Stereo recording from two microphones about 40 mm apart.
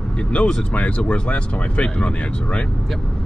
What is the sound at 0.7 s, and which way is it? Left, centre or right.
Speech, left.